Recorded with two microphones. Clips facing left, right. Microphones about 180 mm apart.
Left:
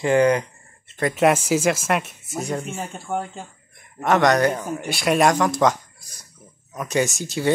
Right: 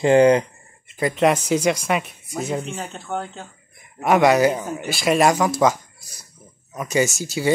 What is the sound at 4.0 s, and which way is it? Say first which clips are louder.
Speech: right 2 dB; 10° right (ahead or behind).